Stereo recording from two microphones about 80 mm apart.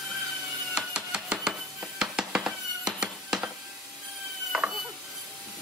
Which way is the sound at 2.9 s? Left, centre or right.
Centre.